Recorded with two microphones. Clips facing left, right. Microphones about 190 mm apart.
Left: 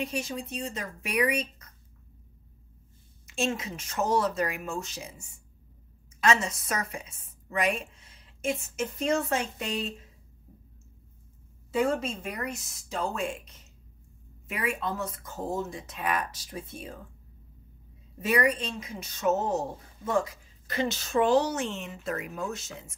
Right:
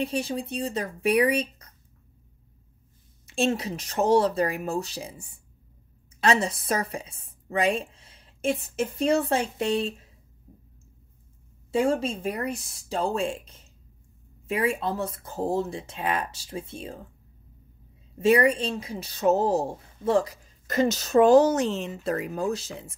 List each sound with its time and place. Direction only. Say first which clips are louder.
0.0 s a woman's voice: right 5 dB; 30° right (ahead or behind)
3.3 s a woman's voice: right 5 dB; 35° right (ahead or behind)
11.7 s a woman's voice: right 3 dB; 30° right (ahead or behind)
18.2 s a woman's voice: right 6 dB; 30° right (ahead or behind)